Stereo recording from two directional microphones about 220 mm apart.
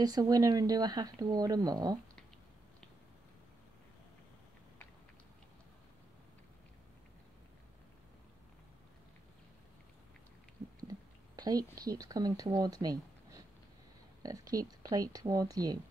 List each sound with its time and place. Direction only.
0.0 s speech: 15° right (ahead or behind)
10.8 s speech: 15° right (ahead or behind)